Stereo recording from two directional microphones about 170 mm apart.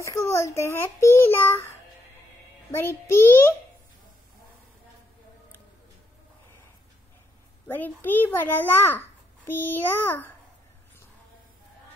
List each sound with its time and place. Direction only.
0.0 s a child's voice: 15° left (ahead or behind)
2.7 s a child's voice: 15° left (ahead or behind)
7.6 s a child's voice: 10° left (ahead or behind)